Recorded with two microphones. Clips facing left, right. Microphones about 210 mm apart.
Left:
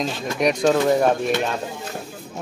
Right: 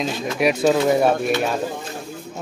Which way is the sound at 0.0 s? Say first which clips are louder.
Right 1 dB; 5° right (ahead or behind).